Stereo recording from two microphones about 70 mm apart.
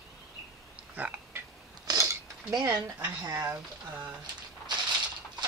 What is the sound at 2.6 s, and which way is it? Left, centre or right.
Speech, right.